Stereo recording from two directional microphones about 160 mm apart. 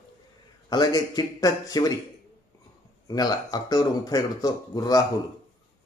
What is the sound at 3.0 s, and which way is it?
Speech, 25° left (ahead or behind).